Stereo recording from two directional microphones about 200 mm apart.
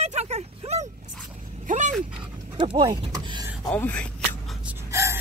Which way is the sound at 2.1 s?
25° right (ahead or behind).